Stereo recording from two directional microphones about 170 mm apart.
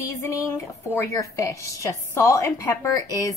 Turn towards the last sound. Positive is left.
turn(degrees=15)  # may be behind; listen again after turning